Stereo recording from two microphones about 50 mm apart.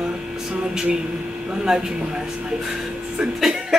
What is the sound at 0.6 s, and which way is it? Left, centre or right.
Speech, centre.